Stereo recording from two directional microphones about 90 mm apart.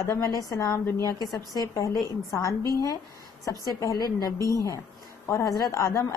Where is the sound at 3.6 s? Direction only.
45° left (ahead or behind).